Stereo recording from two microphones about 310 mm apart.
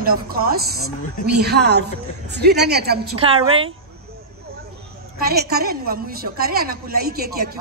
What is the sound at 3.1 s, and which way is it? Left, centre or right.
Speech, centre.